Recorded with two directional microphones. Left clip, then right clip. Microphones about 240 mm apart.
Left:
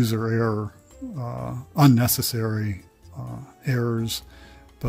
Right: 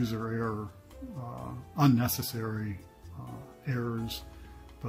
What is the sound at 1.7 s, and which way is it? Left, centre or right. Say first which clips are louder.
Speech: left 8 dB; left.